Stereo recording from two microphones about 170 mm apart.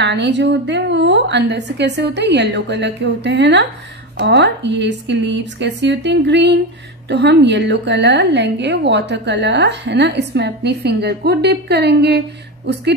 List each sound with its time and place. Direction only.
0.0 s a woman's voice: 90° right